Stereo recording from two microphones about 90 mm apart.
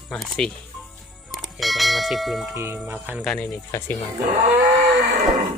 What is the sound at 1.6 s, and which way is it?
Speech, centre (ahead or behind).